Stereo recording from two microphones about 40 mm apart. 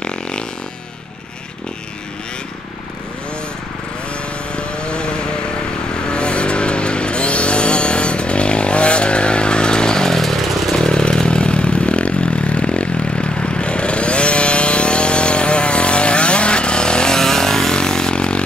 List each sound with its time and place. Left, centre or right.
0.0 s fart: left
4.6 s vehicle: left
6.0 s vehicle: left; by 10.8 s centre
10.8 s vehicle: left